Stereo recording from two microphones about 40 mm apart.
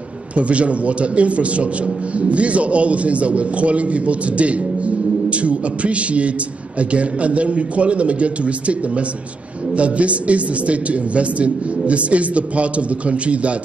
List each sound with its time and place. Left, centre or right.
0.4 s a man's voice: right